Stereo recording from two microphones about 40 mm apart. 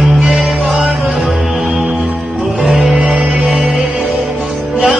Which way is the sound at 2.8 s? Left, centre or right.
Centre.